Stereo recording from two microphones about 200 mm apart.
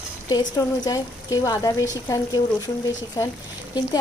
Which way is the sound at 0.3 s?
20° left (ahead or behind).